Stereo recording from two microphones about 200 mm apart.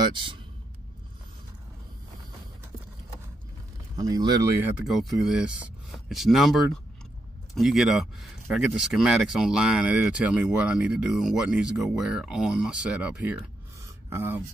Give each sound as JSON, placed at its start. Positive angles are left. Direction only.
{"t": 0.0, "sound": "a man's voice", "side_deg": -25}
{"t": 3.9, "sound": "speech", "side_deg": -20}
{"t": 13.8, "sound": "a sound", "side_deg": -10}